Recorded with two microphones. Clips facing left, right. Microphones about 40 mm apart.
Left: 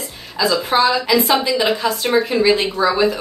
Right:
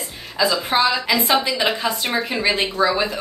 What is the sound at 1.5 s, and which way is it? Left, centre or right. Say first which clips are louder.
Speech: left 3 dB; centre.